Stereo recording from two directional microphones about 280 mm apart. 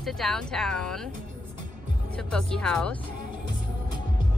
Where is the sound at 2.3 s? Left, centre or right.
Centre.